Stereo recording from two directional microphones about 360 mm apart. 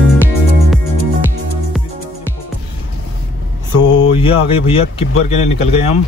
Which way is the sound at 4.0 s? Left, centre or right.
Centre.